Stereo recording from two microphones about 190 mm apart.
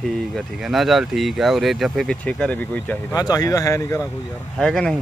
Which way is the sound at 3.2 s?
20° left (ahead or behind).